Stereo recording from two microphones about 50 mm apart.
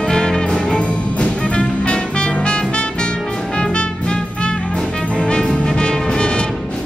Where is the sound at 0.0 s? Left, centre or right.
Centre.